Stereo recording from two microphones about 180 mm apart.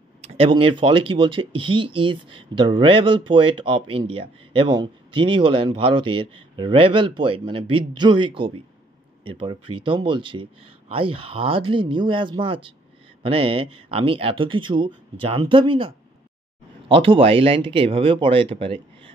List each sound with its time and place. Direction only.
0.2 s speech: 35° right (ahead or behind)